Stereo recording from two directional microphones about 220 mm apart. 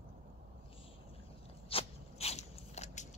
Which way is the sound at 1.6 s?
25° left (ahead or behind).